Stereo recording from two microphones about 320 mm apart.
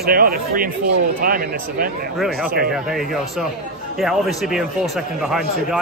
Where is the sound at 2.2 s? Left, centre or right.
Centre.